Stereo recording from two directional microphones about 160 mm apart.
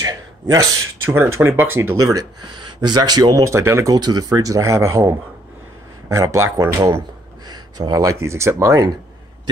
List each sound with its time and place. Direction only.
0.0 s speech: 20° right (ahead or behind)